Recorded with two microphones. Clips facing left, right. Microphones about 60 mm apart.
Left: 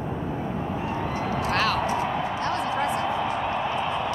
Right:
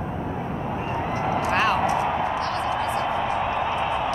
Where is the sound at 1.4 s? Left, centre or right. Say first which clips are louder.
Right 2 dB; right.